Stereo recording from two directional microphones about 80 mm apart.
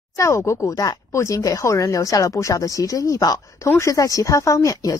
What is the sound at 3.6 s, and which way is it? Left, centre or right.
Speech, left.